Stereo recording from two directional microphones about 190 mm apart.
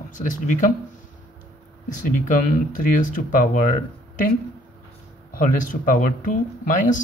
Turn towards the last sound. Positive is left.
turn(degrees=40)  # may be behind; listen again after turning